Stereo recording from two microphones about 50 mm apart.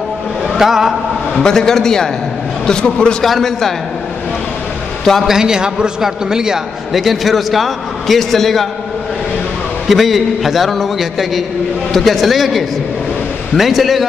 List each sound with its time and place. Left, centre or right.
0.6 s a man's voice: centre
1.4 s a man's voice: centre
3.3 s a man's voice: centre
5.2 s a man's voice: centre
6.9 s a man's voice: centre
9.8 s a man's voice: centre